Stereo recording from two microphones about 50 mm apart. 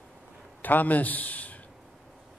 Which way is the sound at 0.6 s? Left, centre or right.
Left.